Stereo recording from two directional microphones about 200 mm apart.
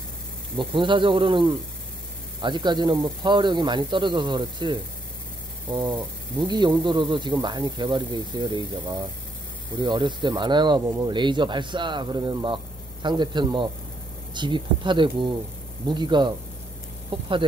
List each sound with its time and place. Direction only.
0.6 s speech: 25° right (ahead or behind)
6.4 s speech: 20° right (ahead or behind)